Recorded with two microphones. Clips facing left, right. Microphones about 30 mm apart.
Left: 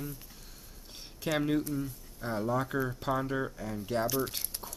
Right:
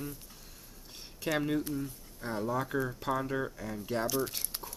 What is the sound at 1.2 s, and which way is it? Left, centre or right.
Speech, centre.